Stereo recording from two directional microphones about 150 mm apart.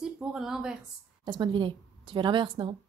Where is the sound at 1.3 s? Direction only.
30° right (ahead or behind).